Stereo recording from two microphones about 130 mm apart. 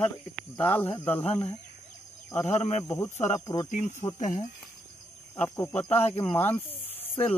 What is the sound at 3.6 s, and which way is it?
Speech, 80° left.